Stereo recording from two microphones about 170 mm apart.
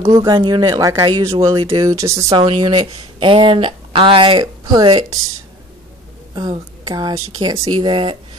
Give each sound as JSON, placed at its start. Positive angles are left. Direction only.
{"t": 0.0, "sound": "speech", "side_deg": -25}
{"t": 3.2, "sound": "speech", "side_deg": -30}
{"t": 6.3, "sound": "speech", "side_deg": -25}